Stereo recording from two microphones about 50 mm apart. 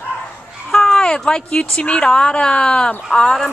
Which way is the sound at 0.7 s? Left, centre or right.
Centre.